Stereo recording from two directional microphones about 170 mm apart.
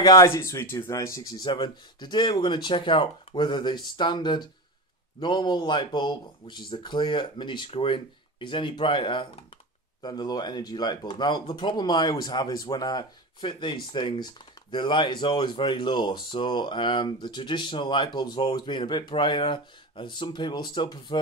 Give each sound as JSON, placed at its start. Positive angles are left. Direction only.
{"t": 0.0, "sound": "speech", "side_deg": 20}